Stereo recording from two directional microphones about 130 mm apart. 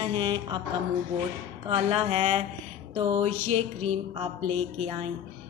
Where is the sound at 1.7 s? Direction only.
50° right (ahead or behind).